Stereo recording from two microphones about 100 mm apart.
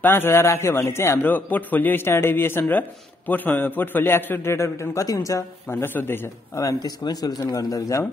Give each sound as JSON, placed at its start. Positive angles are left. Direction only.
{"t": 0.0, "sound": "a man's voice", "side_deg": 20}
{"t": 5.7, "sound": "speech", "side_deg": 20}